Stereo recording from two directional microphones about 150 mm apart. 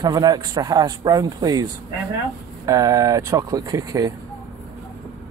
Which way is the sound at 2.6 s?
20° right (ahead or behind).